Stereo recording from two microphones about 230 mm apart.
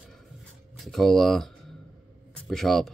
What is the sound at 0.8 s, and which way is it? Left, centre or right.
Speech, centre.